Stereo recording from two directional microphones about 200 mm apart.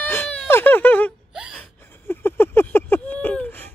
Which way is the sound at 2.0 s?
10° left (ahead or behind).